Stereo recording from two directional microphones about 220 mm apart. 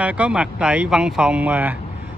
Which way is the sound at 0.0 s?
5° right (ahead or behind).